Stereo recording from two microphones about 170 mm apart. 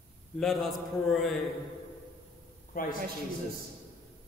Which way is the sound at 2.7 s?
55° left (ahead or behind).